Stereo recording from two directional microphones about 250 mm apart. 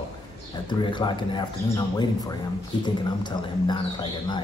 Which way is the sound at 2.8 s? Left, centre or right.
Centre.